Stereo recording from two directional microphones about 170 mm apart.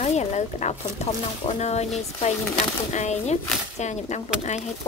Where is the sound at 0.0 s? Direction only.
40° left (ahead or behind).